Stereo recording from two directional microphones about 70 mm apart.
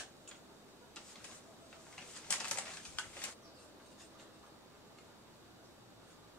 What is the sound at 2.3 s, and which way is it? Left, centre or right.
Bird, centre.